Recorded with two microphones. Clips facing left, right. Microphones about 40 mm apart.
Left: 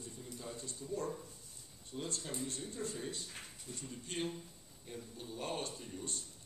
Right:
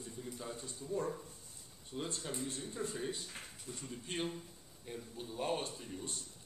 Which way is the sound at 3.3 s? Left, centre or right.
Centre.